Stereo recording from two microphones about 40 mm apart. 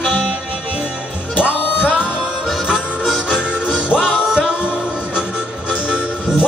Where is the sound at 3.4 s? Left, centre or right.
Right.